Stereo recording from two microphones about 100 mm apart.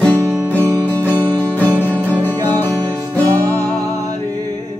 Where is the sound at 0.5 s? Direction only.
20° left (ahead or behind).